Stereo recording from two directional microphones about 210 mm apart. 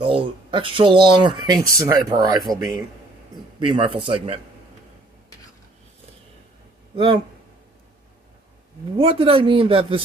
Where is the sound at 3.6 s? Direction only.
25° right (ahead or behind).